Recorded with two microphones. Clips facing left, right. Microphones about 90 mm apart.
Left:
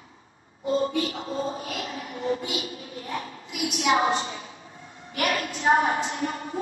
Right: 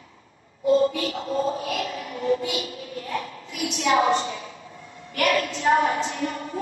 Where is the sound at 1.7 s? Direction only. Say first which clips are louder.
Right 4 dB; 30° left (ahead or behind).